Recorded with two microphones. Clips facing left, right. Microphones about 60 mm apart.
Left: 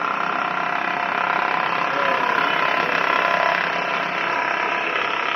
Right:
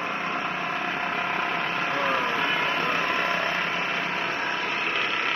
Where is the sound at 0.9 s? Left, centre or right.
Left.